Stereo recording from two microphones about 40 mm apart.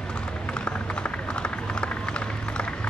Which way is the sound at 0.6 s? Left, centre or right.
Left.